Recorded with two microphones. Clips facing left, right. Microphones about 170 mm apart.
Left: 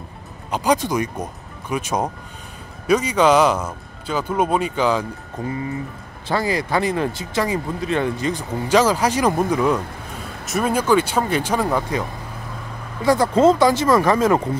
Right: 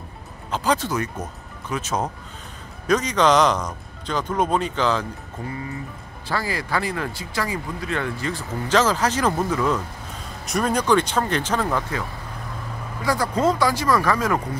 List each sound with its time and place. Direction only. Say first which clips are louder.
0.5 s speech: left 3 dB; 15° left (ahead or behind)
10.4 s speech: left 2 dB; 5° left (ahead or behind); by 14.4 s 25° left (ahead or behind)